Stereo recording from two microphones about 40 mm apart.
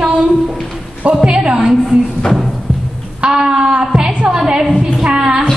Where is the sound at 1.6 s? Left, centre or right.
Centre.